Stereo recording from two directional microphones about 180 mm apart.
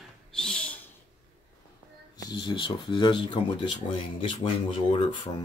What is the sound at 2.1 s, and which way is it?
Speech, 20° left (ahead or behind).